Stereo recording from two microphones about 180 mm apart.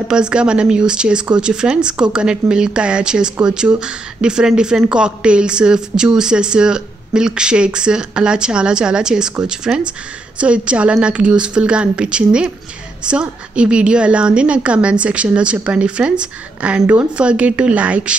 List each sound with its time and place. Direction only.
0.1 s a woman's voice: 5° right (ahead or behind)